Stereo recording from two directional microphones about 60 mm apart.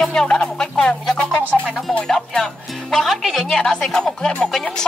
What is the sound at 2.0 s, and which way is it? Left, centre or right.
A woman's voice, centre.